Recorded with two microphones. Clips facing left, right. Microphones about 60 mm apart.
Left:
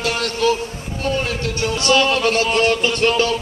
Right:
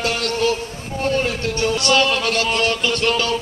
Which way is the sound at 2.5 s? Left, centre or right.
Left.